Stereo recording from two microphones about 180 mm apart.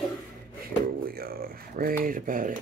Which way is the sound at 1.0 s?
55° right (ahead or behind).